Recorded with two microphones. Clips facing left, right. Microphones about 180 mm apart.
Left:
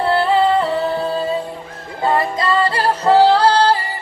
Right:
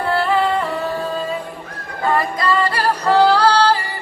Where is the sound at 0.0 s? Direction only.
25° left (ahead or behind).